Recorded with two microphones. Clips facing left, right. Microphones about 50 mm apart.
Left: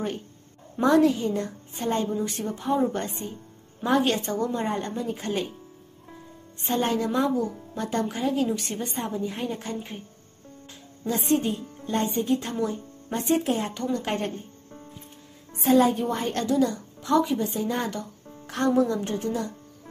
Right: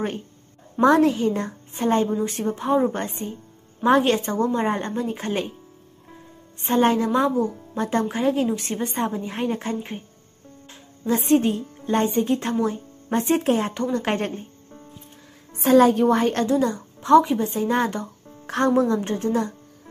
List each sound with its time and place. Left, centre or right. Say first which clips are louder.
0.7 s a woman's voice: right 3 dB; right
6.6 s a woman's voice: right 6 dB; right
8.9 s a woman's voice: right 4 dB; right
11.1 s speech: right 5 dB; right
15.5 s a woman's voice: right 5 dB; right
16.3 s a woman's voice: right 3 dB; right